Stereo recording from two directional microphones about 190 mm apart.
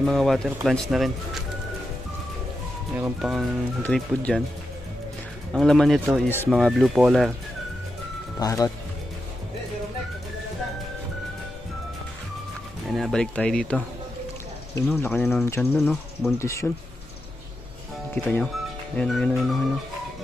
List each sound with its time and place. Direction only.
0.0 s speech: 5° left (ahead or behind)
3.0 s speech: 5° right (ahead or behind)
5.5 s speech: centre (ahead or behind)
8.4 s speech: 20° left (ahead or behind)
12.9 s speech: centre (ahead or behind)
14.9 s speech: 10° left (ahead or behind)
15.8 s speech: centre (ahead or behind)
16.3 s speech: 15° left (ahead or behind)
18.1 s speech: 5° left (ahead or behind)